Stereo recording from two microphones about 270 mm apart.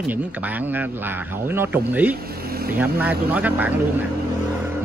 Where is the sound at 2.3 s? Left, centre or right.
Right.